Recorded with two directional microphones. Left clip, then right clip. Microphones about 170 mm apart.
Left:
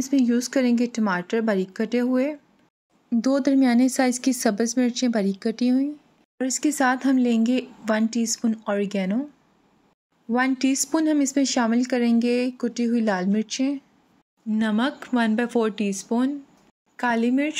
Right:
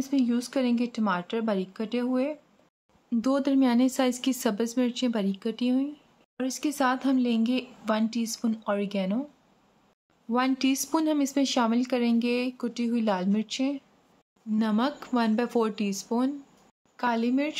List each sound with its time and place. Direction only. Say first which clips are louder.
0.0 s speech: left 5 dB; 20° left (ahead or behind)
10.3 s a woman's voice: left 3 dB; 10° left (ahead or behind)